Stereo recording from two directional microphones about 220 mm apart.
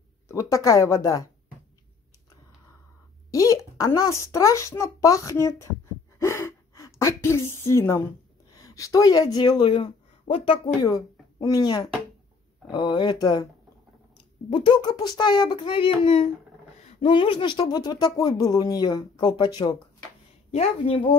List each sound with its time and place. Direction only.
0.3 s speech: 15° left (ahead or behind)
3.3 s speech: 15° left (ahead or behind)
6.1 s gasp: 10° left (ahead or behind)
8.5 s speech: 15° left (ahead or behind)
14.5 s speech: 20° left (ahead or behind)